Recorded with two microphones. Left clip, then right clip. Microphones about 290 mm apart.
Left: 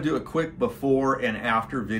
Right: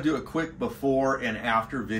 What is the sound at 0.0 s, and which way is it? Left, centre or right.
Speech, centre.